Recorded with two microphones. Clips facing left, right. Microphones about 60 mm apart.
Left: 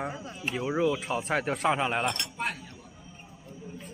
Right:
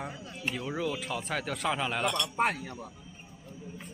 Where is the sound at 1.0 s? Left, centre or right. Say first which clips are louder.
Left 5 dB; left.